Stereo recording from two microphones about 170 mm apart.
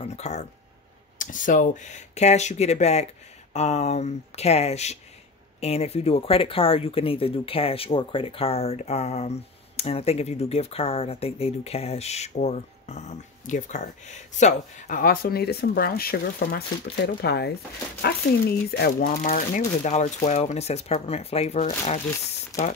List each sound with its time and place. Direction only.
0.0 s speech: 40° left (ahead or behind)